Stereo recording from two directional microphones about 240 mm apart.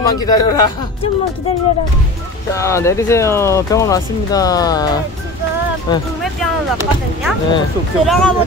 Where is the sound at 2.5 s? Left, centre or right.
Centre.